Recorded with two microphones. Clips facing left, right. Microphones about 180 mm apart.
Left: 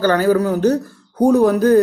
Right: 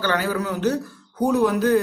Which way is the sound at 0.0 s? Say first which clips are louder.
Left 9 dB; 45° left (ahead or behind).